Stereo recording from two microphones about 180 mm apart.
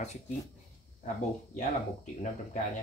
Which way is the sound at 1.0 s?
40° left (ahead or behind).